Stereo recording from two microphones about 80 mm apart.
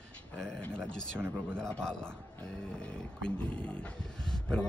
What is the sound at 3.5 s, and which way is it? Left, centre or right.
Speech, centre.